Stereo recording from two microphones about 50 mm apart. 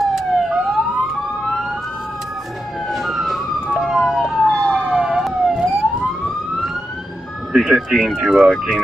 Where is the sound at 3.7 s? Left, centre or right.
Centre.